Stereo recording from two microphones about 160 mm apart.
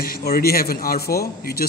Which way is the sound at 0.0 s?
70° left (ahead or behind).